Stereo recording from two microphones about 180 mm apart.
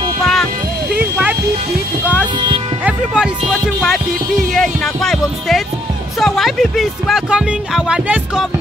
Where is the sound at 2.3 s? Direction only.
25° right (ahead or behind).